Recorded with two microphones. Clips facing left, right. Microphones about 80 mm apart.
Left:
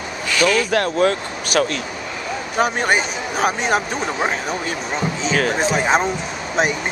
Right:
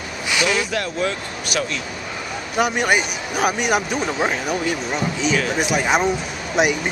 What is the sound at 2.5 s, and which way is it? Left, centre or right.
Speech, left.